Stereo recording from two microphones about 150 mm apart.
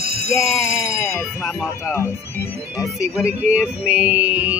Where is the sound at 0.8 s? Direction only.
15° left (ahead or behind).